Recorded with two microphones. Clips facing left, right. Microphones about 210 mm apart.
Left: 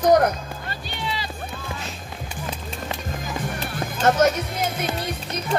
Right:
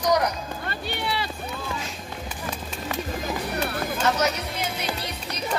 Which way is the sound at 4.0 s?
50° left (ahead or behind).